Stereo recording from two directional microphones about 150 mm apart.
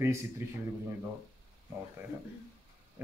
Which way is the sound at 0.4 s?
15° right (ahead or behind).